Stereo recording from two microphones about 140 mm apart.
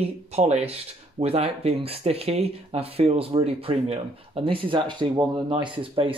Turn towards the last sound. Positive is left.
turn(degrees=-40)  # may be behind; listen again after turning